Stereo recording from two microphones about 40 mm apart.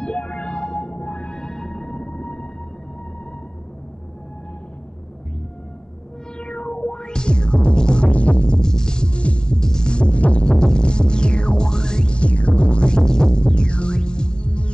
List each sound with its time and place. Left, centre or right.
0.0 s music: left
1.4 s music: centre
6.3 s music: left
10.5 s music: centre